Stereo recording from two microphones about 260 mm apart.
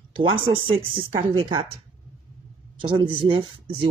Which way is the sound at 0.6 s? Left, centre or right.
Centre.